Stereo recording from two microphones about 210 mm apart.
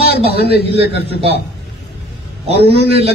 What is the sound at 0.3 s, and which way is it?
Speech, 50° left (ahead or behind).